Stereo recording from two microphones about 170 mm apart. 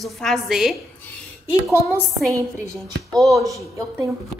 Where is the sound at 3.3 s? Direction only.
20° right (ahead or behind).